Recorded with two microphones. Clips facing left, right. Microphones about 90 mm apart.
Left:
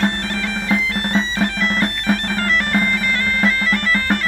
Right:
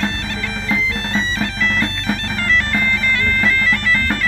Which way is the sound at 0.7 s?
50° left (ahead or behind).